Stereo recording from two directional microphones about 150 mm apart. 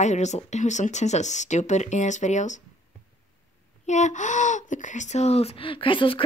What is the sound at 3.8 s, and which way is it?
Speech, 50° left (ahead or behind).